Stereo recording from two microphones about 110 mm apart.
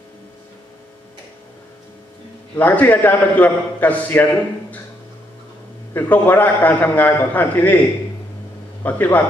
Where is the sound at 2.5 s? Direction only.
15° left (ahead or behind).